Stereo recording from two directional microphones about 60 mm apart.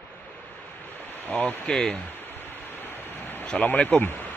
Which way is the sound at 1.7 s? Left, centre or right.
Centre.